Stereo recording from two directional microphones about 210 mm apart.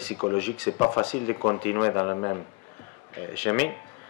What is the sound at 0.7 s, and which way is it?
A man's voice, 25° left (ahead or behind).